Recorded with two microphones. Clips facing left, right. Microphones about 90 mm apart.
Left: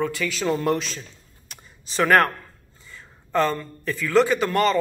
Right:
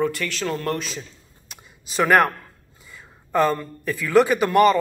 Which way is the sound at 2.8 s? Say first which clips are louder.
Even; 10° right (ahead or behind).